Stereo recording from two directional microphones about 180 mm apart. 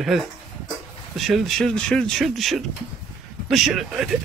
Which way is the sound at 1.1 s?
Centre (ahead or behind).